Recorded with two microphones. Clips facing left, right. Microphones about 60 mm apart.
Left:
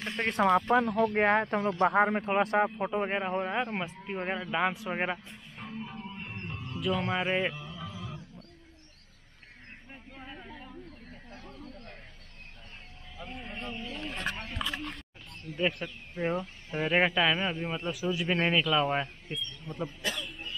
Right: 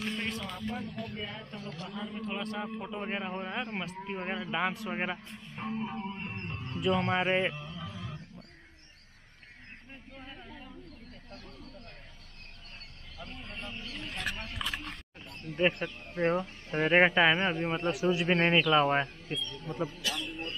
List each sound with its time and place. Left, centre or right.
0.1 s speech: left
2.4 s speech: left
2.9 s a man's voice: left
3.9 s a man's voice: centre
5.7 s music: right
6.3 s guitar: centre
7.2 s a sound: centre
10.1 s a sound: centre
11.5 s a sound: left
13.2 s wild animals: centre
14.6 s a sound: centre
15.5 s speech: centre
16.9 s speech: right
17.4 s a man's voice: centre